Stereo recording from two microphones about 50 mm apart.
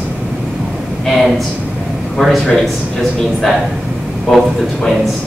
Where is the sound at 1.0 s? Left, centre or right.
Centre.